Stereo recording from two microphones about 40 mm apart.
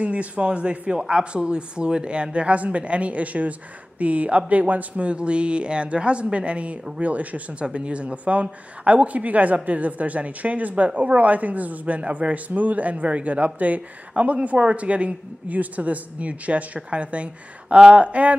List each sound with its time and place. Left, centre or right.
0.0 s speech: right